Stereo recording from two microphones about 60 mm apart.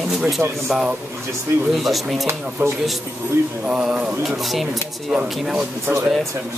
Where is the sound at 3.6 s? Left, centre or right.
Centre.